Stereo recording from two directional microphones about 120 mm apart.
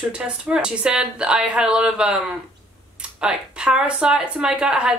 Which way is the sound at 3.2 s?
5° right (ahead or behind).